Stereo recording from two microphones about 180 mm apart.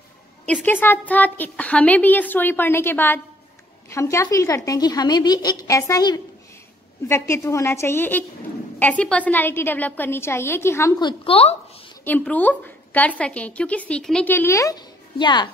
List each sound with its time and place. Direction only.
0.5 s a woman's voice: 10° left (ahead or behind); by 11.5 s 30° left (ahead or behind)
12.0 s a woman's voice: 10° left (ahead or behind); by 15.5 s 25° left (ahead or behind)